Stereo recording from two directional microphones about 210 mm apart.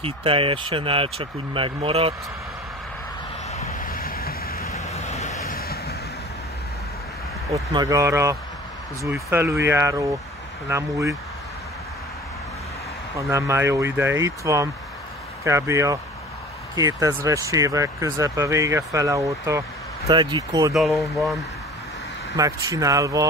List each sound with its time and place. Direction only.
0.0 s speech: 25° right (ahead or behind)
3.5 s vehicle: 40° left (ahead or behind)
4.7 s vehicle: 30° left (ahead or behind)
5.4 s vehicle: 45° left (ahead or behind)
7.7 s speech: 15° right (ahead or behind)
13.3 s speech: 15° right (ahead or behind)
20.7 s speech: centre (ahead or behind)
22.4 s speech: 15° right (ahead or behind)